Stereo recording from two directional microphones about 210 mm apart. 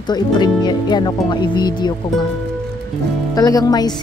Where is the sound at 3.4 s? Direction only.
15° left (ahead or behind).